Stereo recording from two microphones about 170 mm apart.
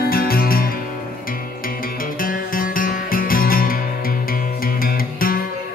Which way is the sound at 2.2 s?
55° left (ahead or behind).